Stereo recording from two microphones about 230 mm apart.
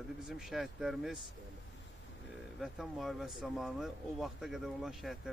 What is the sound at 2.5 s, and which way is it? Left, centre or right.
Speech, centre.